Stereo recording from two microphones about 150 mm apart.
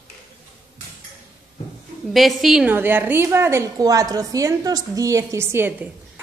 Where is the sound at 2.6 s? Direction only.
15° right (ahead or behind).